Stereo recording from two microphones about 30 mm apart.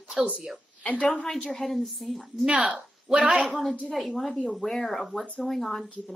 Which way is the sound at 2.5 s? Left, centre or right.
Right.